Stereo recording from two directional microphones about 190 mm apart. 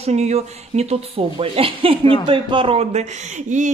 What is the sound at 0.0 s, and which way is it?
Speech, 35° right (ahead or behind).